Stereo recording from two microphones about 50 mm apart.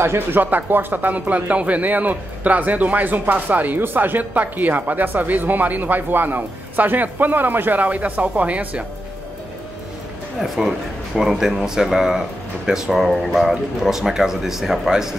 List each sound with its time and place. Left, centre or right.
0.0 s speech: right
0.4 s speech: right
10.4 s speech: centre